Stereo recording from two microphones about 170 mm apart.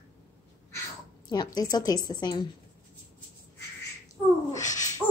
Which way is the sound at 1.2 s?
25° left (ahead or behind).